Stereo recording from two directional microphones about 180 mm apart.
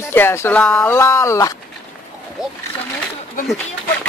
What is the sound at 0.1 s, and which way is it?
Speech, 15° left (ahead or behind).